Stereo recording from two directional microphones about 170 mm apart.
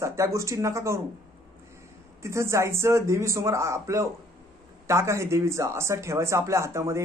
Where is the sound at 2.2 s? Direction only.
15° right (ahead or behind).